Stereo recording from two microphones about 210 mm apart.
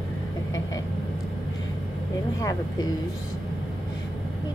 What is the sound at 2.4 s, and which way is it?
Speech, 15° left (ahead or behind).